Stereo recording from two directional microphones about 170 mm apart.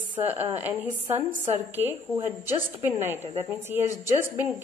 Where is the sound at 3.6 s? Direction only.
15° right (ahead or behind).